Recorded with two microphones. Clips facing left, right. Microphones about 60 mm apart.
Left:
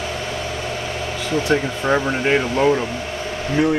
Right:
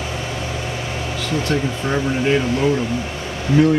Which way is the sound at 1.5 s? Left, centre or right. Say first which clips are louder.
Left 4 dB; left.